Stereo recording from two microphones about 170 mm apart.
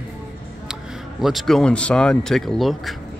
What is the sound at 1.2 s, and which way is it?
Speech, centre (ahead or behind).